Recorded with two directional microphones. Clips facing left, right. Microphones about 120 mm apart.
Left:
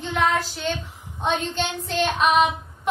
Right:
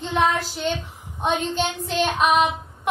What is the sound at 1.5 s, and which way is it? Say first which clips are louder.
Child singing: right 1 dB; 10° right (ahead or behind).